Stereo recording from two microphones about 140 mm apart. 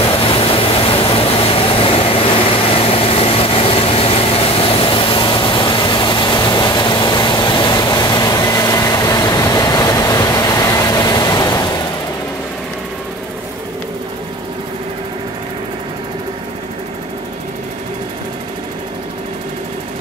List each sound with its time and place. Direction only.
0.0 s vehicle: 40° left (ahead or behind); by 11.7 s 25° left (ahead or behind)